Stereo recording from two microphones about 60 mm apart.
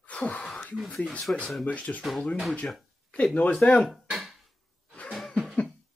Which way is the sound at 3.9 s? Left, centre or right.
Centre.